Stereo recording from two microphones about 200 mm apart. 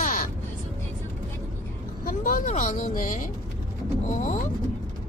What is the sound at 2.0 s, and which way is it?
Speech, 45° left (ahead or behind).